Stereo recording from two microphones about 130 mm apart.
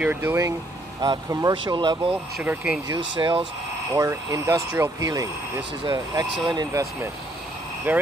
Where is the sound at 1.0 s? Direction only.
30° right (ahead or behind).